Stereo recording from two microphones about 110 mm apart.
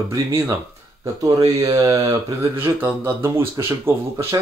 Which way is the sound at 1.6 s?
30° right (ahead or behind).